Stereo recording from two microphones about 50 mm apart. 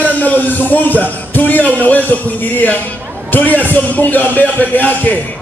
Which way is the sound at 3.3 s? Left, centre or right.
Left.